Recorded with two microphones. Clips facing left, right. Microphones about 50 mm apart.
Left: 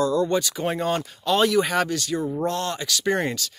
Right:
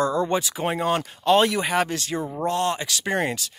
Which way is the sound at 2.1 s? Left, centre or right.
Centre.